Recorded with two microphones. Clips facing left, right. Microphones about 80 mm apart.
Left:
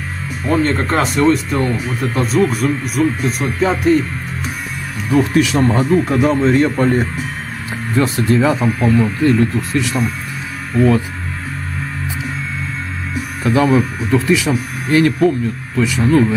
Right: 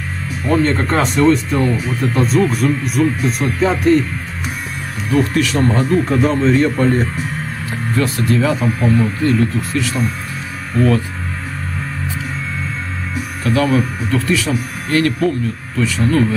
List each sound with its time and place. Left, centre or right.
0.5 s speech: centre
5.1 s speech: centre
10.8 s speech: centre
13.4 s speech: centre